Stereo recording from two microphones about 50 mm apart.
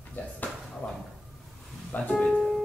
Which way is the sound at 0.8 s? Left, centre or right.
Left.